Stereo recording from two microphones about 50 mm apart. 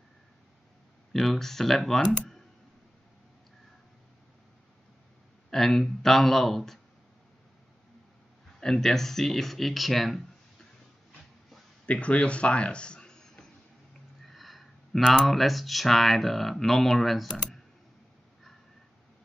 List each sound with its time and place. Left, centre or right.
1.1 s speech: centre
5.5 s speech: centre
8.5 s speech: centre
11.8 s speech: left
14.2 s a sound: centre
15.2 s speech: centre